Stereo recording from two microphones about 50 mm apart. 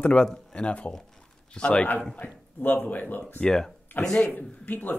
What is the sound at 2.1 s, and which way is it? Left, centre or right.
Speech, left.